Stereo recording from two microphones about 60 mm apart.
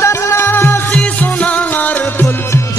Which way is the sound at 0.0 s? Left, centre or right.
Left.